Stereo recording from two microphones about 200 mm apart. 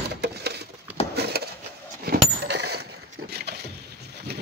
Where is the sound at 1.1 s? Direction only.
55° right (ahead or behind).